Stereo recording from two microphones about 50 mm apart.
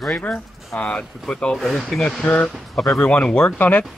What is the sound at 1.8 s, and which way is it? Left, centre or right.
Speech, centre.